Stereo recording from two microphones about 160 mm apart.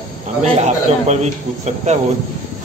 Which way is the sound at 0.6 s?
45° right (ahead or behind).